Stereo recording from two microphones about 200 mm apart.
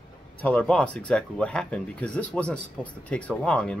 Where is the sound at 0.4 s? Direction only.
5° left (ahead or behind).